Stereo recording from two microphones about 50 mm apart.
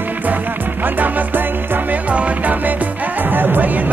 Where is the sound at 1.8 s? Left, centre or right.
Right.